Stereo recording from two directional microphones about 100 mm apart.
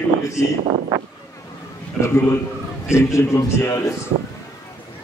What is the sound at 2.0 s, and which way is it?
A man's voice, 25° left (ahead or behind).